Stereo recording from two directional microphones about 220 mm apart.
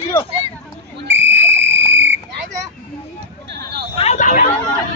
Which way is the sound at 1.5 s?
55° right (ahead or behind).